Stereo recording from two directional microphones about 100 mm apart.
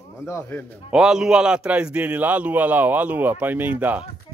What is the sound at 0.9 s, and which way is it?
A man's voice, 5° right (ahead or behind).